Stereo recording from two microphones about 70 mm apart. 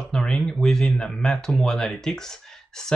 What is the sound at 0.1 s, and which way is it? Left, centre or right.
Speech, centre.